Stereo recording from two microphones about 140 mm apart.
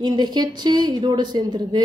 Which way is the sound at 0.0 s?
30° right (ahead or behind).